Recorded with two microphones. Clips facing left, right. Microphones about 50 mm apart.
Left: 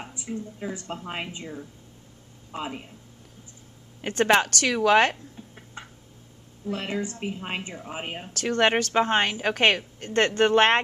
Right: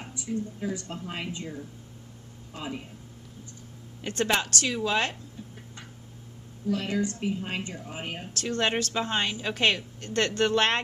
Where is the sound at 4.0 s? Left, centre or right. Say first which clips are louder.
Left 6 dB; left.